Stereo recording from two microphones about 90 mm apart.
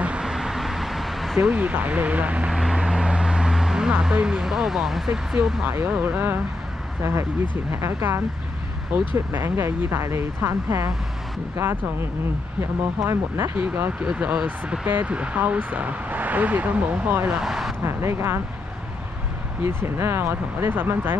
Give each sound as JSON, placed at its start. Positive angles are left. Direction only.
{"t": 0.0, "sound": "a sound", "side_deg": -10}
{"t": 1.4, "sound": "speech", "side_deg": -20}
{"t": 2.5, "sound": "vehicle", "side_deg": -5}
{"t": 5.9, "sound": "speech", "side_deg": -20}
{"t": 9.3, "sound": "speech", "side_deg": -30}
{"t": 13.0, "sound": "speech", "side_deg": -30}
{"t": 13.6, "sound": "speech", "side_deg": -20}
{"t": 17.4, "sound": "speech", "side_deg": -5}
{"t": 17.8, "sound": "speech", "side_deg": -30}
{"t": 19.6, "sound": "speech", "side_deg": -30}